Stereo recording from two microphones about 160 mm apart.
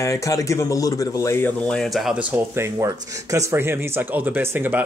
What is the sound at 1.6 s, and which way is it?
Speech, centre (ahead or behind).